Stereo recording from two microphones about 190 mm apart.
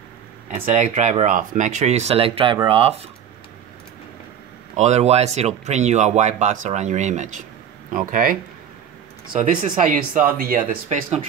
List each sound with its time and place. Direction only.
0.9 s speech: 40° right (ahead or behind)
4.7 s speech: 35° right (ahead or behind)